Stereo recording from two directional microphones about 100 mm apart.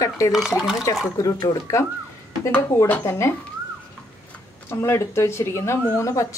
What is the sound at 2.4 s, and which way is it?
Speech, 25° left (ahead or behind).